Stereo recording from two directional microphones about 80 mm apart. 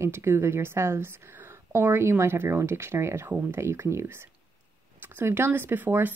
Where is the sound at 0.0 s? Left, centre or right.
Right.